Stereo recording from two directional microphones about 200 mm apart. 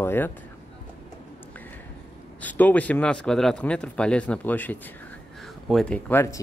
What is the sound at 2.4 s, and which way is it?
Speech, 10° left (ahead or behind).